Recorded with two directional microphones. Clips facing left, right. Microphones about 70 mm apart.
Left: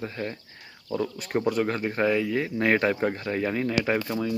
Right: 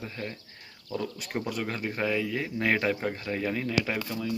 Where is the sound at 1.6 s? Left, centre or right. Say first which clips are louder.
Left 5 dB; centre.